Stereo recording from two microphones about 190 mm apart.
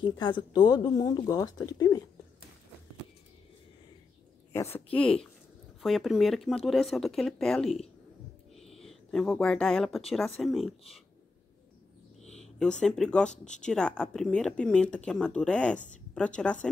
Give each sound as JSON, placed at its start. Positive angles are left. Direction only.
{"t": 0.0, "sound": "speech", "side_deg": 25}
{"t": 4.9, "sound": "speech", "side_deg": 5}
{"t": 12.4, "sound": "a sound", "side_deg": 5}
{"t": 12.8, "sound": "speech", "side_deg": 5}